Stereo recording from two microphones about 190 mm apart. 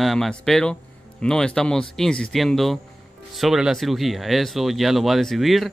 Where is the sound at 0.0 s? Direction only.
Centre (ahead or behind).